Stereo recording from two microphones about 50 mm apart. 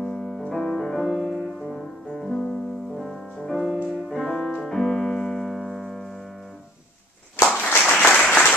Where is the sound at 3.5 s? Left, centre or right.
Centre.